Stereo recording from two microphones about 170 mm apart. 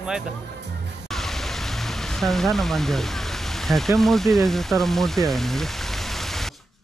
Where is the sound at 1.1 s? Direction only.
Centre (ahead or behind).